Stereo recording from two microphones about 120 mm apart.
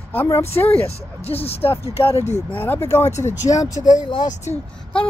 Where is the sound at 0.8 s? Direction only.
55° left (ahead or behind).